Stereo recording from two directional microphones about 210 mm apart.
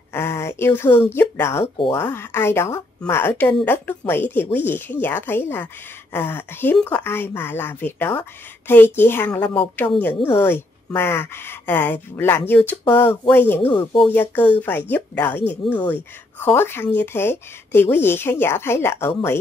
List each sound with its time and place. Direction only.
0.1 s a sound: 10° left (ahead or behind)
1.1 s a woman's voice: 10° left (ahead or behind)
13.7 s speech: 25° left (ahead or behind)
14.1 s a woman's voice: 10° left (ahead or behind)